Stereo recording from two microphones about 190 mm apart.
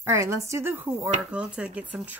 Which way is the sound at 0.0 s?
15° right (ahead or behind).